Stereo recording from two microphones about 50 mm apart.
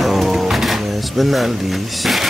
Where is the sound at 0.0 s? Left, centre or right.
Centre.